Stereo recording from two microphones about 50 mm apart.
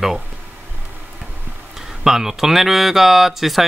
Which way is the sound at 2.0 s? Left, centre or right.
Centre.